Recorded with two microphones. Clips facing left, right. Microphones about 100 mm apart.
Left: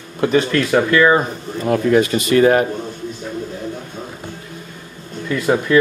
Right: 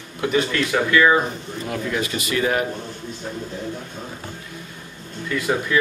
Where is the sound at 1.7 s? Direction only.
45° left (ahead or behind).